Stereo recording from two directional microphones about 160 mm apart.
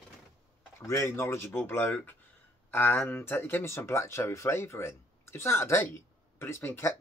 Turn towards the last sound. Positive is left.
turn(degrees=15)  # may be behind; listen again after turning